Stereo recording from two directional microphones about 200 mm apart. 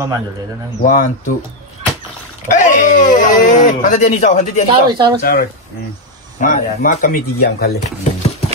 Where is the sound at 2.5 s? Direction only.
40° left (ahead or behind).